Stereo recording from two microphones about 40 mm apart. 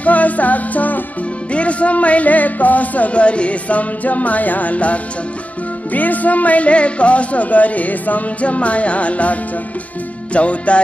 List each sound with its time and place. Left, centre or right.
0.0 s music: left
1.5 s speech: left